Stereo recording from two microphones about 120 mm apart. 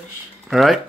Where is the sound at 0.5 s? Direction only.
Centre (ahead or behind).